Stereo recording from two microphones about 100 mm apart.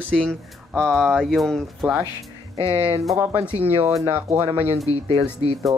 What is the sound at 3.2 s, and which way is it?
Speech, 25° right (ahead or behind).